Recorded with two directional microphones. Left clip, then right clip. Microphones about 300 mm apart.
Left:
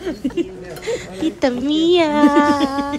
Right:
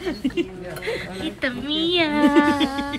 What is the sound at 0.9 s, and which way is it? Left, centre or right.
A woman's voice, centre.